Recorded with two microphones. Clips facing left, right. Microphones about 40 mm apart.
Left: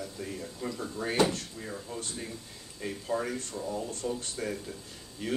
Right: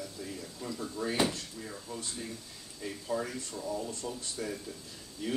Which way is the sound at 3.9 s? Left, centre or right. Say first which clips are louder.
Left 4 dB; left.